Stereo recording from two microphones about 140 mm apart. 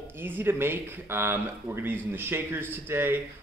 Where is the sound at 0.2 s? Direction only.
15° right (ahead or behind).